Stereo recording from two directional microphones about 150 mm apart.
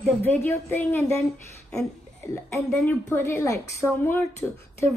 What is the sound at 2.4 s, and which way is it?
A woman's voice, 20° left (ahead or behind).